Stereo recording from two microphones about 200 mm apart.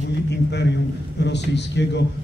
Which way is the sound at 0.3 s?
60° left (ahead or behind).